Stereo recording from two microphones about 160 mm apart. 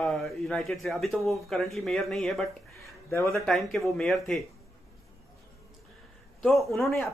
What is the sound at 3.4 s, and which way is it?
Speech, centre (ahead or behind).